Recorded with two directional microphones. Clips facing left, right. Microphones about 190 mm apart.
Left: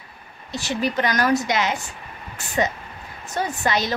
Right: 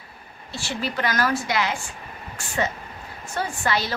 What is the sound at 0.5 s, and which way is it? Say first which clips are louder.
A woman's voice: left 5 dB; 20° left (ahead or behind).